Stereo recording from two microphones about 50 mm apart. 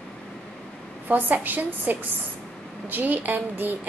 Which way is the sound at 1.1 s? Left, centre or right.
Right.